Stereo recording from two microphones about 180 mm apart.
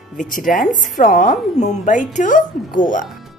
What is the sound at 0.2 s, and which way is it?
A woman's voice, 50° left (ahead or behind).